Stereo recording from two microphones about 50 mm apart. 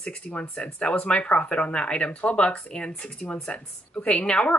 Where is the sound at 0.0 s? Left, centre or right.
Left.